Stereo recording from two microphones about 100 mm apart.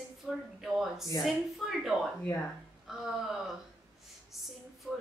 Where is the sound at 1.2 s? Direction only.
Centre (ahead or behind).